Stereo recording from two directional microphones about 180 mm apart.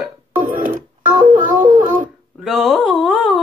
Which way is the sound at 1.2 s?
45° right (ahead or behind).